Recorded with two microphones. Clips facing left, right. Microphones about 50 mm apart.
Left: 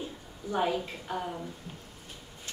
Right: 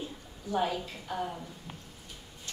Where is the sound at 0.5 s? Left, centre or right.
Left.